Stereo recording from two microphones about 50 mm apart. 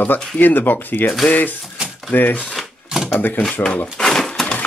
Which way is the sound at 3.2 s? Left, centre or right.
Left.